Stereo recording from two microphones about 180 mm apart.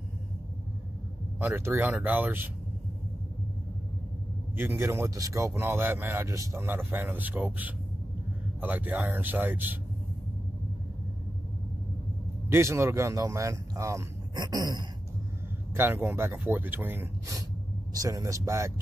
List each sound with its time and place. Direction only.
1.4 s a man's voice: 10° right (ahead or behind)
4.6 s a man's voice: 15° right (ahead or behind)
12.4 s a man's voice: 15° right (ahead or behind)
15.7 s a man's voice: 10° right (ahead or behind)